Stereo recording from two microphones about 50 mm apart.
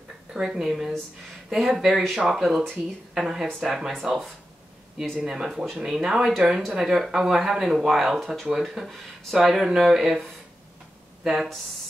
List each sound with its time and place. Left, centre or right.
0.3 s speech: centre